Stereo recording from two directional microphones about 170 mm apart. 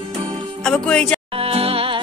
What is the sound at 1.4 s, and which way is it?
Music, 35° right (ahead or behind).